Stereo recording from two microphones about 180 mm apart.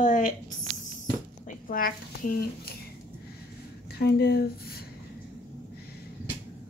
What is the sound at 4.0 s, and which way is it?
Speech, 65° left (ahead or behind).